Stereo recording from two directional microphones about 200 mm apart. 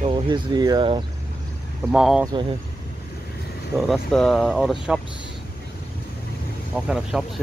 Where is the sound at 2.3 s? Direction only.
25° right (ahead or behind).